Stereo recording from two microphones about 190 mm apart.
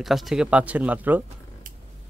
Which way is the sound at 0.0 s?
Centre (ahead or behind).